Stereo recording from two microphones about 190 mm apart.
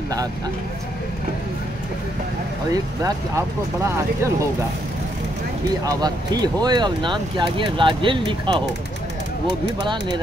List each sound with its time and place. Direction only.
2.7 s speech: 15° right (ahead or behind)
5.9 s speech: 20° right (ahead or behind)